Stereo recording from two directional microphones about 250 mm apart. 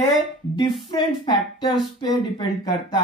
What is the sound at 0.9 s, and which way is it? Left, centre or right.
Speech, centre.